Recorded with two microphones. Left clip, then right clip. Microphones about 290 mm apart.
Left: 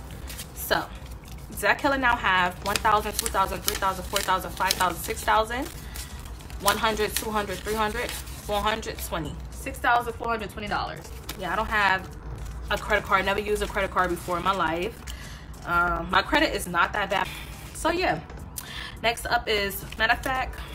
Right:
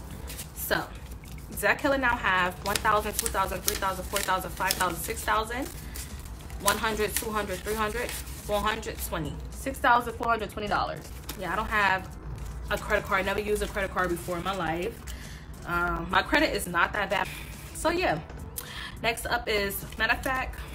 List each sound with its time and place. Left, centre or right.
1.6 s a woman's voice: centre